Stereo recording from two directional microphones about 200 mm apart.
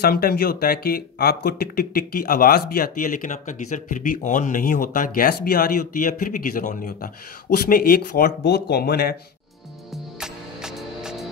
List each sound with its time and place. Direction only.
0.0 s speech: 50° left (ahead or behind)
10.2 s music: 5° right (ahead or behind)